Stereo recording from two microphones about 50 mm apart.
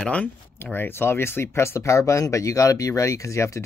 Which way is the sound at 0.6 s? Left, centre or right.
Left.